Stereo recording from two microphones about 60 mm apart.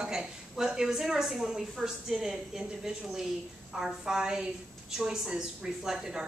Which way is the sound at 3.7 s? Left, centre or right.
Centre.